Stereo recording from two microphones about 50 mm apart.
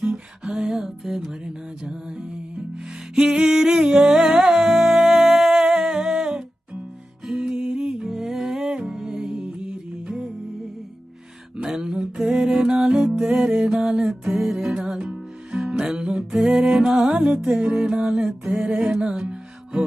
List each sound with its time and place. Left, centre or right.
0.0 s music: centre
3.3 s singing: centre
4.2 s humming: centre
8.1 s music: centre
11.5 s a sound: centre
12.0 s music: centre